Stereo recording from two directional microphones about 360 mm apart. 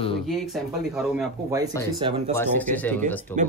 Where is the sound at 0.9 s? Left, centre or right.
Centre.